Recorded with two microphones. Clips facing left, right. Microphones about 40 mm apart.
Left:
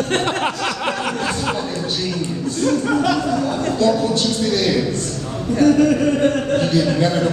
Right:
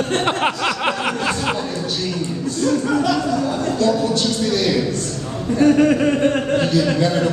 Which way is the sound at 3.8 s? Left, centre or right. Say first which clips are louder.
Left 1 dB; centre.